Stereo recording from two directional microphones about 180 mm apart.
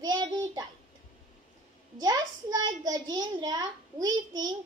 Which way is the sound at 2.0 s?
20° right (ahead or behind).